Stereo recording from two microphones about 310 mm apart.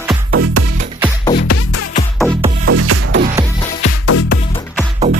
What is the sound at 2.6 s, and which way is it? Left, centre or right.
Music, right.